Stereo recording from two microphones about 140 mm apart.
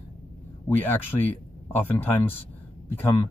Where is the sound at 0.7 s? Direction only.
15° left (ahead or behind).